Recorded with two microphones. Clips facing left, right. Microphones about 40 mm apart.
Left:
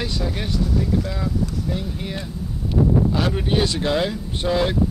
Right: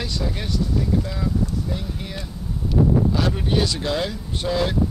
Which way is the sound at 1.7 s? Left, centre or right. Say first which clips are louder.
Left 3 dB; centre.